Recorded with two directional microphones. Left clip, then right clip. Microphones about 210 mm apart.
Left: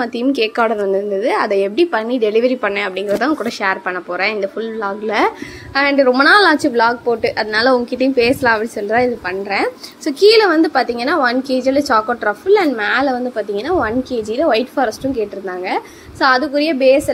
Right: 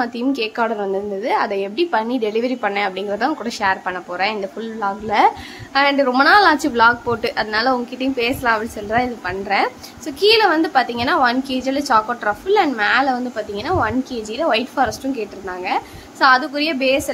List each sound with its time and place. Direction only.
0.0 s a woman's voice: 10° left (ahead or behind)
7.5 s a woman's voice: 20° left (ahead or behind)